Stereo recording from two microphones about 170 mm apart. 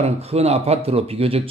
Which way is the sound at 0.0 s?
40° right (ahead or behind).